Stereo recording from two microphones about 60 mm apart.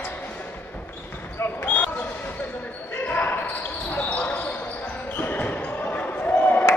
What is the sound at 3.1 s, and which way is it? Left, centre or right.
Basketball bounce, left.